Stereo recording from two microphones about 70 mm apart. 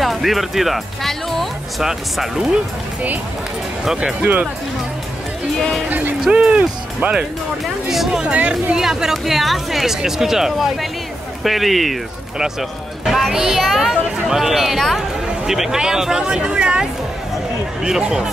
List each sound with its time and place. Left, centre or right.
0.0 s speech: centre
3.8 s speech: centre
4.2 s speech: right
5.9 s speech: right
7.9 s speech: centre
8.7 s speech: centre